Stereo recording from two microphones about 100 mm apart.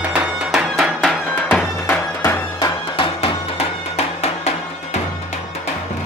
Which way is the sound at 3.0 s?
65° left (ahead or behind).